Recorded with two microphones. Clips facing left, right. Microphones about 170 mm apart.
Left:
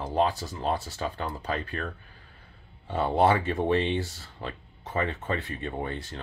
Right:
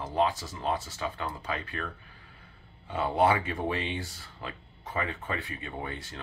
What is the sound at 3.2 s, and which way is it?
Speech, 30° left (ahead or behind).